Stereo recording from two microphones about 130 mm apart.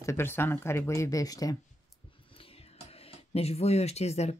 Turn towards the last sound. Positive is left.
turn(degrees=55)  # may be behind; listen again after turning